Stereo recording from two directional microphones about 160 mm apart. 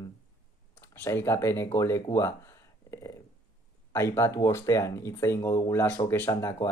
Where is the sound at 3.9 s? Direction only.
15° left (ahead or behind).